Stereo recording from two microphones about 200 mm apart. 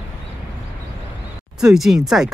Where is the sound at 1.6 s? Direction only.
Centre (ahead or behind).